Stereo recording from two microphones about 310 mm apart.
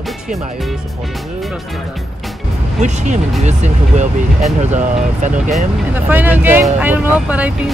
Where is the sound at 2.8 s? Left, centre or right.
Right.